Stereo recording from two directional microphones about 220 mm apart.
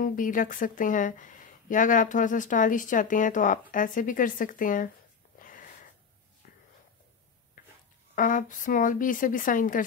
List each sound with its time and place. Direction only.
0.0 s speech: 35° left (ahead or behind)
5.4 s a sound: 40° left (ahead or behind)
8.1 s speech: 35° left (ahead or behind)